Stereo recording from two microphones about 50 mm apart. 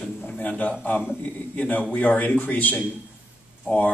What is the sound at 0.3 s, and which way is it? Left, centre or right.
A man's voice, left.